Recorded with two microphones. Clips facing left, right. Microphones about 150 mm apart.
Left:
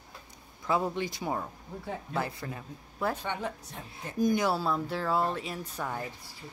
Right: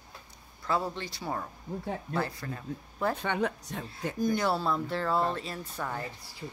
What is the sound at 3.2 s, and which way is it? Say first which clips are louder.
Speech: right 4 dB; 80° right.